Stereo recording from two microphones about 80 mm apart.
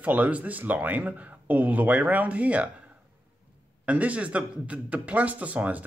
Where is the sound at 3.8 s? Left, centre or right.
Centre.